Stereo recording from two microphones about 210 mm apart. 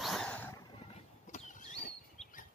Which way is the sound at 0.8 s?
35° left (ahead or behind).